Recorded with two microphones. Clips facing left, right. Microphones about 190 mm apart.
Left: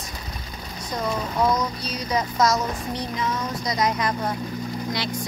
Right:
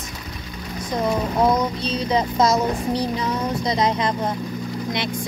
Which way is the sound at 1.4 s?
25° right (ahead or behind).